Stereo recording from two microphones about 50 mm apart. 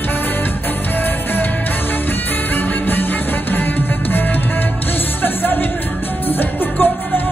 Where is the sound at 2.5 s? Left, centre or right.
Left.